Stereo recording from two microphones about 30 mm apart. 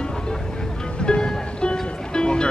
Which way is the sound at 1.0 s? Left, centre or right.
Left.